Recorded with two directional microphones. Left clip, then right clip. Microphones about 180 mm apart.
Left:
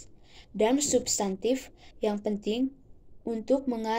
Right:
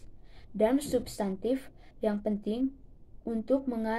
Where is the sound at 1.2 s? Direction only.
5° left (ahead or behind).